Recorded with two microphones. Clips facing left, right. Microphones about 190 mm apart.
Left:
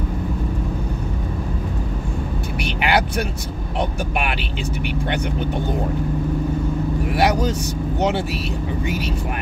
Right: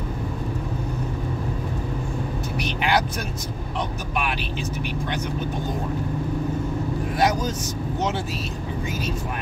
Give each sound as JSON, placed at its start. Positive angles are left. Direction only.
{"t": 2.6, "sound": "speech", "side_deg": 65}
{"t": 7.1, "sound": "speech", "side_deg": 70}
{"t": 8.8, "sound": "speech", "side_deg": 70}